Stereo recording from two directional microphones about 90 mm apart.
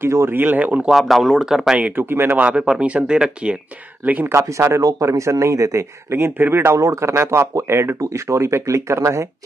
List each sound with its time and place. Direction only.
0.0 s speech: 30° right (ahead or behind)
0.8 s speech: centre (ahead or behind)
1.8 s speech: 20° right (ahead or behind)
4.3 s speech: 35° right (ahead or behind)